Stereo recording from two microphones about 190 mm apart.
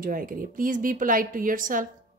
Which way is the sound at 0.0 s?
45° right (ahead or behind).